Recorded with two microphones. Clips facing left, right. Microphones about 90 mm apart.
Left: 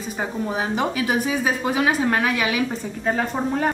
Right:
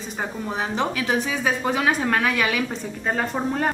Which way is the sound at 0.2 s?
10° left (ahead or behind).